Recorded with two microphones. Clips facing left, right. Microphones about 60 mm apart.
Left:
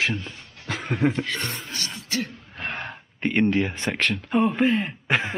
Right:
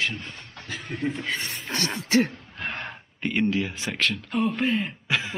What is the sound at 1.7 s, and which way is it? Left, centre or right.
Throat clearing, right.